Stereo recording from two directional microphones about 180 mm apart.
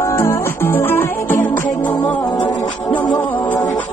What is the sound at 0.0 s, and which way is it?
Music, 15° left (ahead or behind).